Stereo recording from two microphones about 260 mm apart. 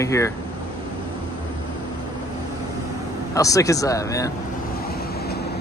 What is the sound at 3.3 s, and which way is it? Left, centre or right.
Speech, centre.